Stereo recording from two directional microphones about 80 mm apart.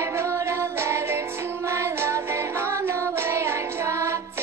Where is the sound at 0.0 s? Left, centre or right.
Right.